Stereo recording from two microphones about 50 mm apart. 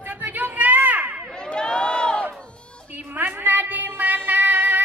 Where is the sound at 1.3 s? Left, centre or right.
Centre.